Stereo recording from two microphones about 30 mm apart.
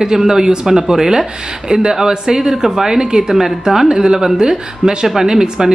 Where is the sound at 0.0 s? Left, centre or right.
Centre.